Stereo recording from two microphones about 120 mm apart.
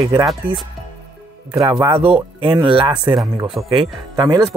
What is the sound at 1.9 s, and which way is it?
Speech, 50° right (ahead or behind).